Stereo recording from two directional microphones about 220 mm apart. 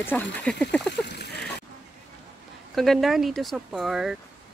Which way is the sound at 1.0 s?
50° left (ahead or behind).